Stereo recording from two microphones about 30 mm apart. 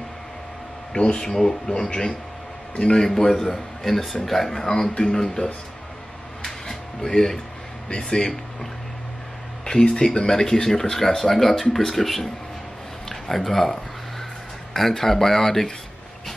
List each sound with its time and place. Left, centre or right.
0.9 s speech: left
1.2 s speech: centre
1.7 s speech: left
3.1 s speech: centre
4.6 s speech: left
7.0 s speech: centre
10.0 s speech: left
14.8 s speech: centre